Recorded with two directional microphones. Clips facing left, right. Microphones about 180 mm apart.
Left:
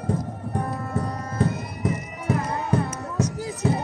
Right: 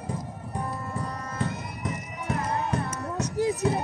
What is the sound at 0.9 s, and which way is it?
Music, 40° left (ahead or behind).